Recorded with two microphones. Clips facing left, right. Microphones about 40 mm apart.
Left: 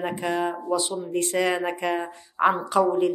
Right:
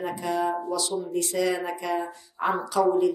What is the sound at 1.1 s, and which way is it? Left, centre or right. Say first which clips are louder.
Speech: left 3 dB; left.